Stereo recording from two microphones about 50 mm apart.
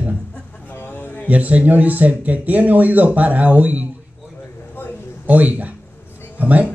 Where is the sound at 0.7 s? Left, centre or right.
Left.